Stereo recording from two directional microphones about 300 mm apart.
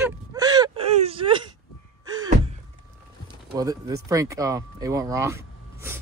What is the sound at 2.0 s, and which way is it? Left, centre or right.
Gasp, centre.